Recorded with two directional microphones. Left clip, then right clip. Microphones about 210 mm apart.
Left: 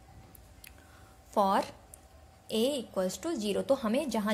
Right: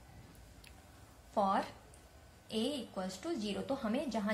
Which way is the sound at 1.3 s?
50° left (ahead or behind).